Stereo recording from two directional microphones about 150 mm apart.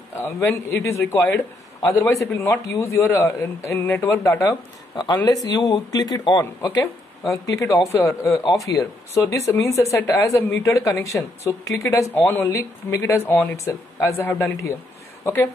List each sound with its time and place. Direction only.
0.2 s speech: 15° left (ahead or behind)
8.6 s speech: 20° left (ahead or behind)